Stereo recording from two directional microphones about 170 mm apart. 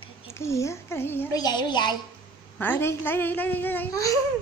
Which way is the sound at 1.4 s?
25° left (ahead or behind).